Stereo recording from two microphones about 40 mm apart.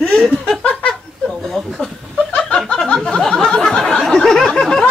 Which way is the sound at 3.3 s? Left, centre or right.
Left.